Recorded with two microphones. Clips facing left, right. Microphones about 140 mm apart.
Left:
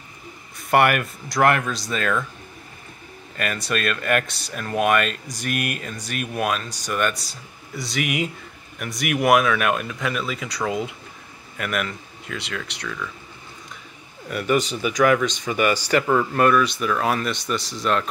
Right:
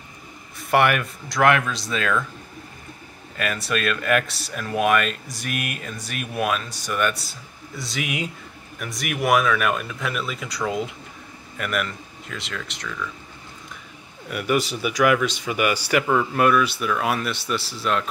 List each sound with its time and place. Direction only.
0.6 s speech: centre (ahead or behind)
3.3 s speech: 5° right (ahead or behind)
14.3 s speech: 5° right (ahead or behind)